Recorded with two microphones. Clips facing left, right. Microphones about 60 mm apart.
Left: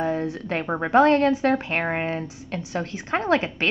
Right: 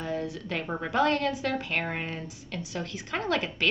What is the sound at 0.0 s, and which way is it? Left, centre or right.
A woman's voice, left.